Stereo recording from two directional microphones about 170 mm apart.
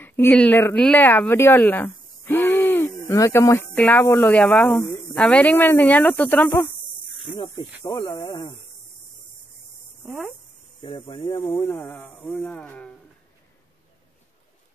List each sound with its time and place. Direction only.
0.0 s speech: 10° left (ahead or behind)
10.8 s speech: 25° left (ahead or behind)
11.5 s speech: 15° left (ahead or behind)